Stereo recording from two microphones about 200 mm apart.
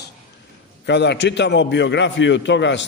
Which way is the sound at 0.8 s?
60° left (ahead or behind).